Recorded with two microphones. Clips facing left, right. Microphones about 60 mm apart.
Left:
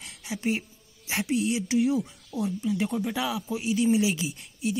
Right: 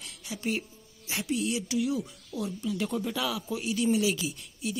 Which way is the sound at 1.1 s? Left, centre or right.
Left.